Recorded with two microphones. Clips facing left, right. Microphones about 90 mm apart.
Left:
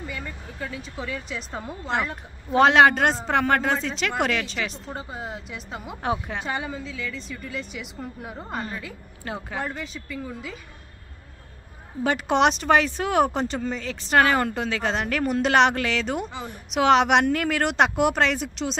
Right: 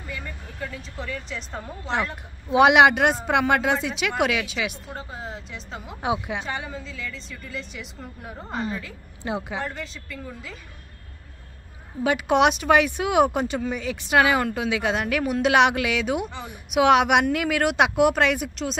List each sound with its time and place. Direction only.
0.0 s speech: 5° left (ahead or behind)
2.5 s speech: 15° right (ahead or behind)
4.9 s a woman's voice: 10° left (ahead or behind)
6.0 s speech: 10° right (ahead or behind)
6.4 s speech: 5° left (ahead or behind)
9.2 s speech: 20° right (ahead or behind)
9.6 s speech: 5° left (ahead or behind)
12.0 s speech: 5° right (ahead or behind)